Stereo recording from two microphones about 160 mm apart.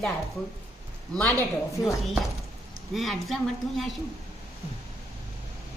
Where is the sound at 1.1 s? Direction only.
10° left (ahead or behind).